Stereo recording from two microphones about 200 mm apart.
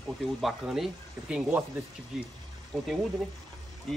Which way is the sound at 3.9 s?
Centre (ahead or behind).